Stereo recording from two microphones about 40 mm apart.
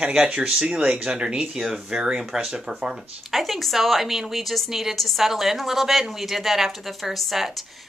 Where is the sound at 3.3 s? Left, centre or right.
Centre.